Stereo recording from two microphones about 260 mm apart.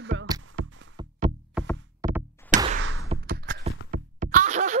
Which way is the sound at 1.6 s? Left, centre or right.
Centre.